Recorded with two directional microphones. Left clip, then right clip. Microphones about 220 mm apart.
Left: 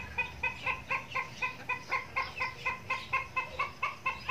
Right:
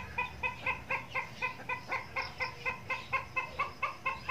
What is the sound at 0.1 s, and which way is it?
Chicken, 40° right (ahead or behind).